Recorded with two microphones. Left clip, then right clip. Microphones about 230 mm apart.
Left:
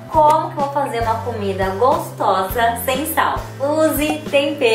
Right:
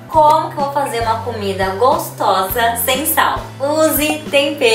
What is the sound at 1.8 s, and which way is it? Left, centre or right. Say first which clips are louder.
Speech: right 2 dB; left.